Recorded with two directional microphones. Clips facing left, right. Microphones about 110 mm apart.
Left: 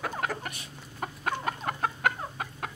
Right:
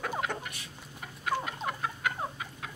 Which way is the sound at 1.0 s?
50° left (ahead or behind).